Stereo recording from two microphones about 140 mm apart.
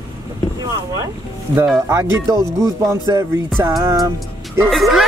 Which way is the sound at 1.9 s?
20° right (ahead or behind).